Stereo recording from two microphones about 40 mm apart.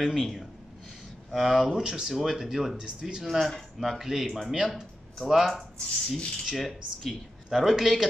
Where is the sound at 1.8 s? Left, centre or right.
Centre.